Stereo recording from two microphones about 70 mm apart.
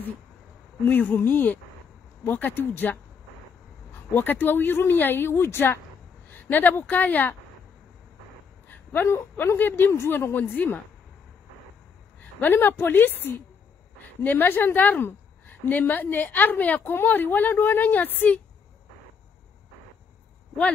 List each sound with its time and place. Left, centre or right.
0.8 s a woman's voice: left
8.6 s a sound: left
9.1 s a woman's voice: left
12.2 s a woman's voice: left